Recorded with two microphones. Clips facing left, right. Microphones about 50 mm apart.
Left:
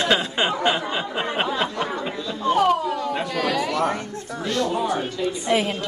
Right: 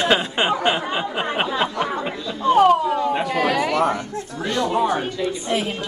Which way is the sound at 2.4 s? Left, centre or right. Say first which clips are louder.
Right 5 dB; right.